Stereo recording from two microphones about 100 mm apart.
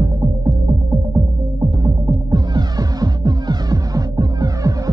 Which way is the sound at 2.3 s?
45° right (ahead or behind).